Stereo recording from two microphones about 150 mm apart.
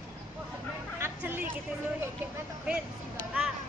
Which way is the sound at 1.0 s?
15° right (ahead or behind).